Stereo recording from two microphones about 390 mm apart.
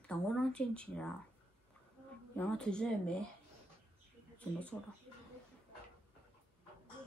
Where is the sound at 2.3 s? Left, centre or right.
Centre.